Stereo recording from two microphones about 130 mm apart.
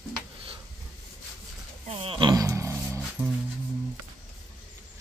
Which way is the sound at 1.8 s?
45° right (ahead or behind).